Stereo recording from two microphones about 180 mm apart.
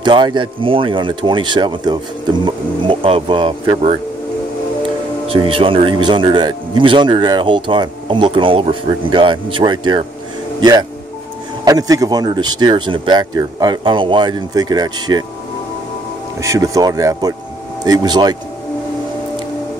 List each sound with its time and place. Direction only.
0.0 s speech: 25° right (ahead or behind)
5.3 s speech: 30° right (ahead or behind)
16.3 s speech: 20° right (ahead or behind)